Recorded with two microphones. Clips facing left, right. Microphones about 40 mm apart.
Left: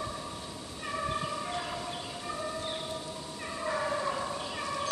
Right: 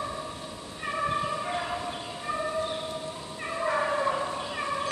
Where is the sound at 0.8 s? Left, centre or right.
Right.